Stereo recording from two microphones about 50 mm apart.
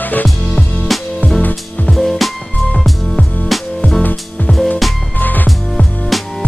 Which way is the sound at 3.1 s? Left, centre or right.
Left.